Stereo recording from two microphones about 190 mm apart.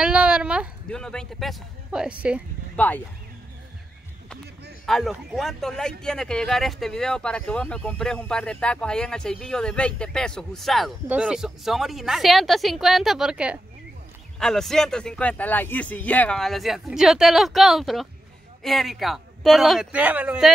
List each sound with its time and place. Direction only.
0.0 s a sound: 5° right (ahead or behind)
0.8 s speech: 5° left (ahead or behind)
2.7 s speech: 10° left (ahead or behind)
4.8 s speech: centre (ahead or behind)